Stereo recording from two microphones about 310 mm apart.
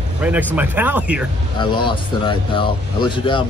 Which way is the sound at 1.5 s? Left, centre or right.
Centre.